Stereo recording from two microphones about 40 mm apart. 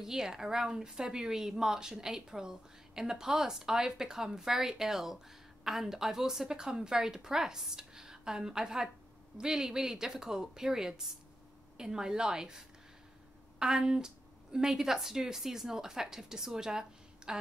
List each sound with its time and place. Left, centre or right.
0.0 s a woman's voice: centre